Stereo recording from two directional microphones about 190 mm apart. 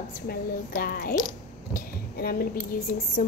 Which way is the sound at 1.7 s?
50° left (ahead or behind).